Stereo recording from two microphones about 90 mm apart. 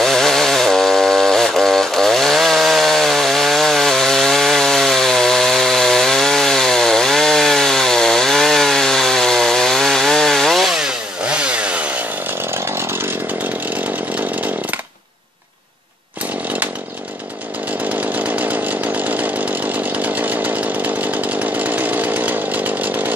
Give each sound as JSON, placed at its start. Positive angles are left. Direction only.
{"t": 0.0, "sound": "chainsaw", "side_deg": 5}
{"t": 18.1, "sound": "chainsaw", "side_deg": -15}